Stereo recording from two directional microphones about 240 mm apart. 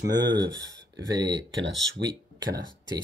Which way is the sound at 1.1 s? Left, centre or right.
Centre.